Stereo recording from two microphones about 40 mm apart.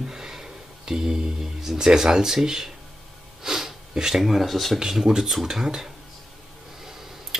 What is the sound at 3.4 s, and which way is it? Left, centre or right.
Sneeze, centre.